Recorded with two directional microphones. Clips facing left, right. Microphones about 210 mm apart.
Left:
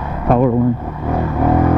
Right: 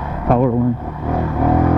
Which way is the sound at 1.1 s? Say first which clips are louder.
Left 1 dB; 25° left (ahead or behind).